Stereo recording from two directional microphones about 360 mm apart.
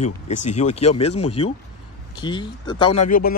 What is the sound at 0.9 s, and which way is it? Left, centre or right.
Speech, left.